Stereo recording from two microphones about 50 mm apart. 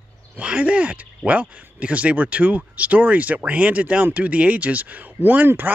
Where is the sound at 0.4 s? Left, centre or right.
Right.